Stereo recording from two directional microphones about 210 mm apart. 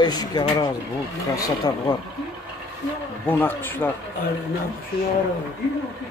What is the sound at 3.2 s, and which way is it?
Speech, 10° left (ahead or behind).